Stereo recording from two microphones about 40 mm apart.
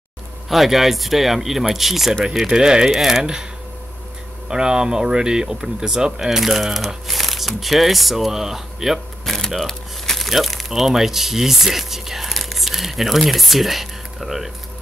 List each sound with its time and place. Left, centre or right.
0.5 s speech: centre
2.4 s speech: centre
4.5 s speech: centre
9.2 s a sound: centre
9.7 s speech: centre